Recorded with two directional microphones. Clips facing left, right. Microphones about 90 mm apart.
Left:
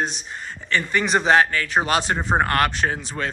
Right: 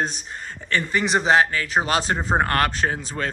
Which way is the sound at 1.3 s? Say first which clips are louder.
Left 1 dB; 30° right (ahead or behind).